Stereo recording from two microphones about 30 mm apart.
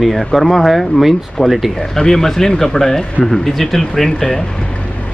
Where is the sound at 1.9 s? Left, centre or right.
Centre.